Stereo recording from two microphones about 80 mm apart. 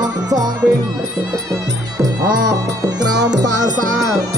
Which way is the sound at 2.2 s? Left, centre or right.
Right.